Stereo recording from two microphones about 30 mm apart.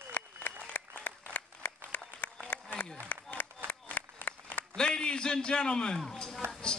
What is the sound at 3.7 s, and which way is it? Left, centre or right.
Applause, left.